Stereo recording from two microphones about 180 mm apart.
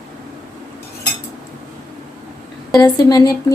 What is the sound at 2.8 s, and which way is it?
Speech, 20° left (ahead or behind).